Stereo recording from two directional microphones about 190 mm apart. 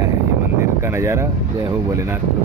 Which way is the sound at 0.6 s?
15° right (ahead or behind).